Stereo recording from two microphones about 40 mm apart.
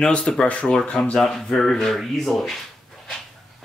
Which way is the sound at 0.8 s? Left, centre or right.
Left.